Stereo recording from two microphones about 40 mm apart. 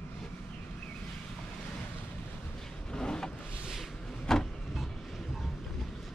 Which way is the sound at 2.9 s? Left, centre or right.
Centre.